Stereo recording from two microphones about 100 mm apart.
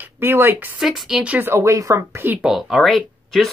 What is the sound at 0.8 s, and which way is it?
A woman's voice, 5° right (ahead or behind).